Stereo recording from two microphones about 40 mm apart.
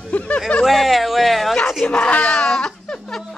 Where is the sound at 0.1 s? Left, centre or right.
Left.